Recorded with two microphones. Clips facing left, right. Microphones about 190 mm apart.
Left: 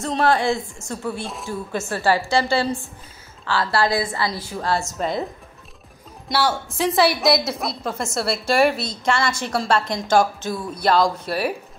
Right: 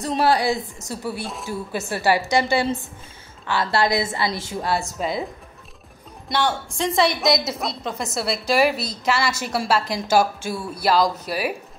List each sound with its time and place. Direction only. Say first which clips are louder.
0.0 s a woman's voice: even; 5° right (ahead or behind)
6.2 s a woman's voice: left 1 dB; 5° left (ahead or behind)